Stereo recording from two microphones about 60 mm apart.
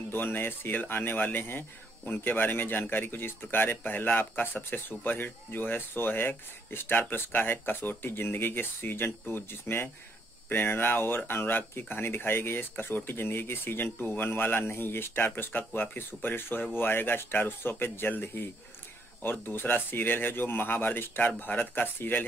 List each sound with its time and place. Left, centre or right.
0.1 s speech: left